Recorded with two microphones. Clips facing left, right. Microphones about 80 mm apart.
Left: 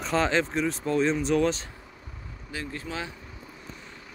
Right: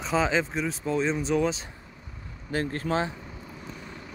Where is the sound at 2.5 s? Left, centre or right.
Right.